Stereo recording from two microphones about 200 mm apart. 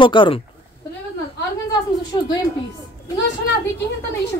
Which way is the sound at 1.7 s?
20° left (ahead or behind).